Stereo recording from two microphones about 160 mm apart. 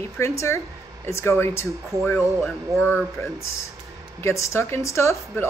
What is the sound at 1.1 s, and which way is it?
Speech, 15° left (ahead or behind).